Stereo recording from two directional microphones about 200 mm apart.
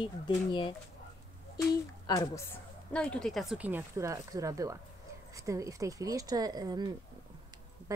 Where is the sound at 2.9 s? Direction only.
5° left (ahead or behind); by 6.9 s 20° right (ahead or behind).